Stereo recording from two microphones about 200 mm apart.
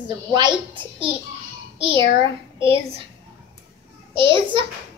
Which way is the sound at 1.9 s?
60° left (ahead or behind).